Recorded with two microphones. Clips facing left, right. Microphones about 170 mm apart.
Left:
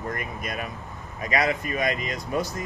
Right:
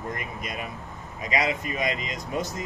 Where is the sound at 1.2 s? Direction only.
20° right (ahead or behind).